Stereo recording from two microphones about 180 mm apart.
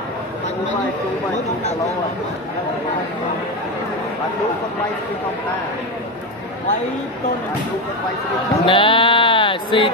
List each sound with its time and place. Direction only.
8.6 s speech: 30° left (ahead or behind)